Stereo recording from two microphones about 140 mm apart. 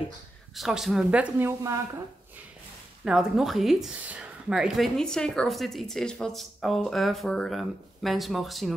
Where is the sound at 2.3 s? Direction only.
10° right (ahead or behind).